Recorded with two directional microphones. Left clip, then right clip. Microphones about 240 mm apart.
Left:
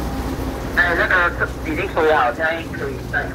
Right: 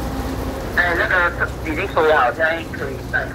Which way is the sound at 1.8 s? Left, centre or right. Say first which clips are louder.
Right 1 dB; right.